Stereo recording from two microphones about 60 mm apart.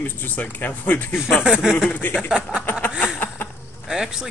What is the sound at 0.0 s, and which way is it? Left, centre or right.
Speech, left.